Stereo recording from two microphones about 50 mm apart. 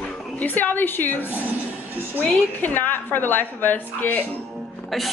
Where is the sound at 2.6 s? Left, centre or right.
Left.